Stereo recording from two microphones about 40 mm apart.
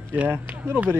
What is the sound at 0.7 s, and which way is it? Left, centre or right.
Speech, right.